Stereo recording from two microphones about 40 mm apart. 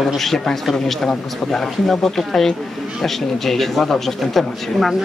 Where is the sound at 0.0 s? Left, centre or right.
Centre.